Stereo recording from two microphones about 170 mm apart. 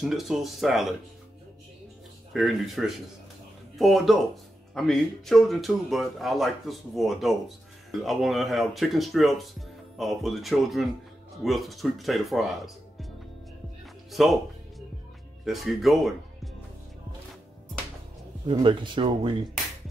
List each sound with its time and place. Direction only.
0.0 s speech: centre (ahead or behind)
2.3 s speech: centre (ahead or behind)
14.1 s speech: centre (ahead or behind)
15.4 s speech: centre (ahead or behind)
18.5 s speech: 30° right (ahead or behind)